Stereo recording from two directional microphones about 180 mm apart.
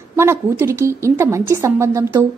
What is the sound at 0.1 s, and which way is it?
A woman's voice, 15° right (ahead or behind).